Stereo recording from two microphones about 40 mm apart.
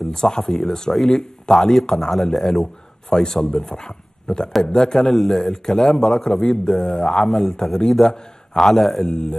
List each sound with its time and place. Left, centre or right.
0.1 s a man's voice: centre
4.5 s a man's voice: centre
4.7 s a man's voice: centre
5.1 s a man's voice: centre
5.4 s a man's voice: centre